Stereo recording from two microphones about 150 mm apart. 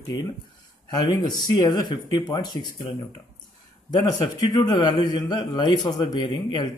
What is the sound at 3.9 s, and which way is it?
A man's voice, 25° left (ahead or behind).